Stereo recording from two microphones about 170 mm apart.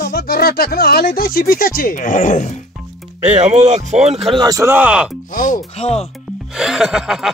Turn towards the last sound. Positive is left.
turn(degrees=-5)  # may be behind; listen again after turning